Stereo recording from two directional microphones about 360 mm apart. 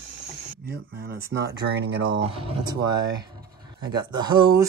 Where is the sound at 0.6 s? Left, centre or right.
Right.